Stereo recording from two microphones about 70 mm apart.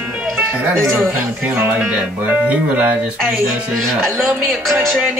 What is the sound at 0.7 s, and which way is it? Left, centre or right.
Music, right.